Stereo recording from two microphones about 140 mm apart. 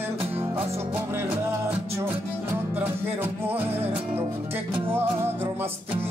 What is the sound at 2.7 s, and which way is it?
Music, 10° right (ahead or behind).